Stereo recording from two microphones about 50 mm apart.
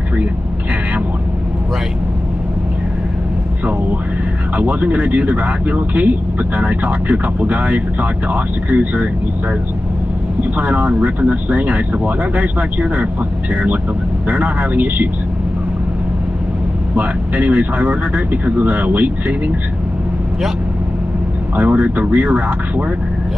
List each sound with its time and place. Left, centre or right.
4.6 s speech: right
10.6 s speech: right
14.2 s speech: right
16.9 s speech: right
21.5 s speech: right